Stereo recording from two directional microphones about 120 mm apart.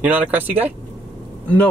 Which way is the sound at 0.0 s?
15° right (ahead or behind).